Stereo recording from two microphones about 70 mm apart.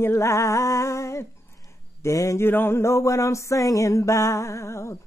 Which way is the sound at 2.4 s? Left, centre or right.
Left.